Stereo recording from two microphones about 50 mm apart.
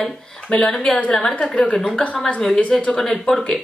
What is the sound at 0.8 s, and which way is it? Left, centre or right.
Speech, left.